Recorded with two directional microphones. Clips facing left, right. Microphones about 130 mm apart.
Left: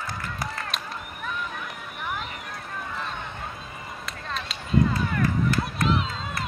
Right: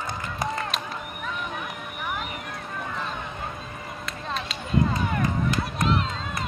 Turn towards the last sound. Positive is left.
turn(degrees=0)  # may be behind; listen again after turning